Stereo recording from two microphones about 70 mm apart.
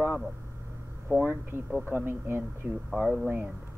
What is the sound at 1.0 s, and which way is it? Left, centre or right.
Speech, right.